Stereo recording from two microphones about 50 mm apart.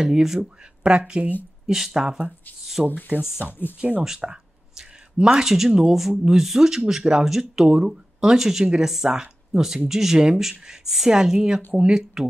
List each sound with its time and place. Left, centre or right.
0.0 s speech: centre
1.7 s speech: centre
3.8 s speech: right